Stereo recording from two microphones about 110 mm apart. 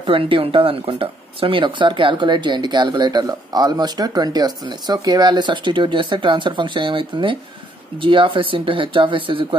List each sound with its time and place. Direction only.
0.0 s speech: 55° right (ahead or behind)